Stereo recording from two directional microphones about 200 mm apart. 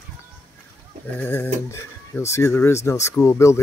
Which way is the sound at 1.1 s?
10° left (ahead or behind).